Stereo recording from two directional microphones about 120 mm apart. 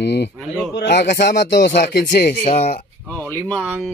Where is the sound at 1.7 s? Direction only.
75° left (ahead or behind).